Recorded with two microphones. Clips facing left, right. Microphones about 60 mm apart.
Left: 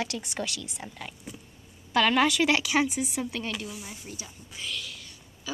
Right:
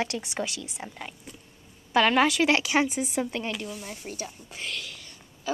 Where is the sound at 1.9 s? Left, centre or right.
Centre.